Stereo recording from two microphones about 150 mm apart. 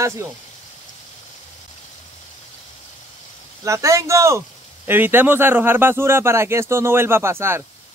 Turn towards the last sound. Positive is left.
turn(degrees=-15)  # may be behind; listen again after turning